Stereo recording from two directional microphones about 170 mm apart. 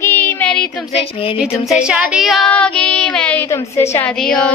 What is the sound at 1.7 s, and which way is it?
Child singing, 5° right (ahead or behind).